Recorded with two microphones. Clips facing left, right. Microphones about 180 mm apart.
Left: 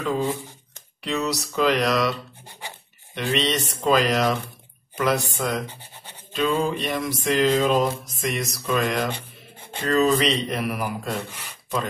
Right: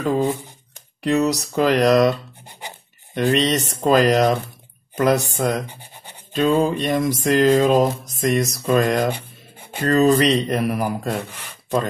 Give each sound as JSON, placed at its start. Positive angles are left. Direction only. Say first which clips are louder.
{"t": 1.0, "sound": "speech", "louder": "right 7 dB", "side_deg": -40}
{"t": 3.2, "sound": "speech", "louder": "right 6 dB", "side_deg": -45}
{"t": 5.7, "sound": "toothbrush", "louder": "right 2 dB", "side_deg": -15}
{"t": 6.3, "sound": "music", "louder": "right 5 dB", "side_deg": -40}
{"t": 7.4, "sound": "speech", "louder": "right 5 dB", "side_deg": -55}
{"t": 9.1, "sound": "a sound", "louder": "right 3 dB", "side_deg": -10}
{"t": 9.8, "sound": "speech", "louder": "right 4 dB", "side_deg": -40}
{"t": 10.3, "sound": "music", "louder": "right 6 dB", "side_deg": -40}